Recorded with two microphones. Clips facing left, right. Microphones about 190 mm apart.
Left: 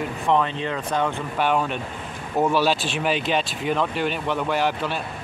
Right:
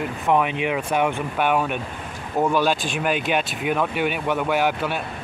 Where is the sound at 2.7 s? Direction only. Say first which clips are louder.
Even; 50° right (ahead or behind).